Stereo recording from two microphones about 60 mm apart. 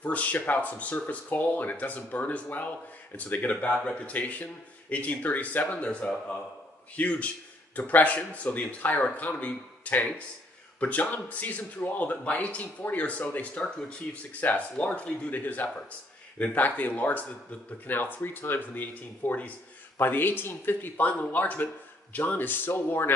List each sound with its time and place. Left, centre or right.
0.0 s speech: left